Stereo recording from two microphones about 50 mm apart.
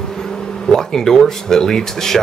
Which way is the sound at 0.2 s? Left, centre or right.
Centre.